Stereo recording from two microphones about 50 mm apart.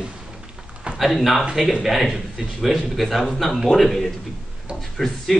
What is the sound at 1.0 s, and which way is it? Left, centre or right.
A man's voice, centre.